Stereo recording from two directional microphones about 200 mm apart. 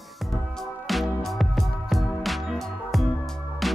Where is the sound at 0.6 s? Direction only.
Centre (ahead or behind).